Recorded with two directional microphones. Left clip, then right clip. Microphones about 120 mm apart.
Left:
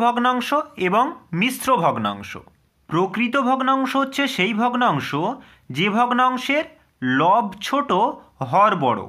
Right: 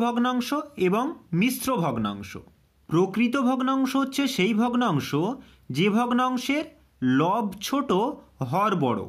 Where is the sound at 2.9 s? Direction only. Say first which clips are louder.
Left 3 dB; 55° right (ahead or behind).